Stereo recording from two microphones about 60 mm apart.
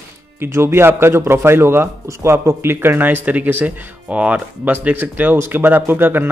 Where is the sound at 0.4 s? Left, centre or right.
Right.